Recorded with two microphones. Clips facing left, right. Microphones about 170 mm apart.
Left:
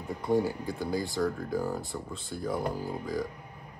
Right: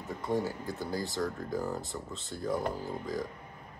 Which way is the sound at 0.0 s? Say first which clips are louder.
Left 4 dB; centre (ahead or behind).